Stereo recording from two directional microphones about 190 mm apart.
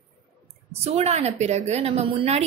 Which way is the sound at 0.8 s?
35° right (ahead or behind).